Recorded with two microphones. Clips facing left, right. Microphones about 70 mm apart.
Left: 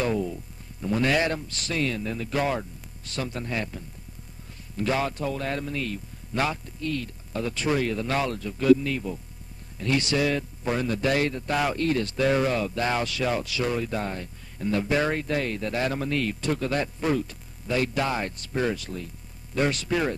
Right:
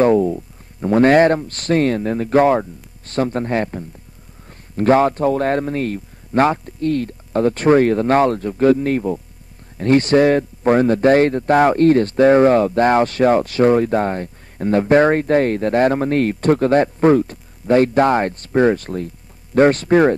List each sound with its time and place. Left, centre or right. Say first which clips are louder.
0.0 s a man's voice: right 13 dB; right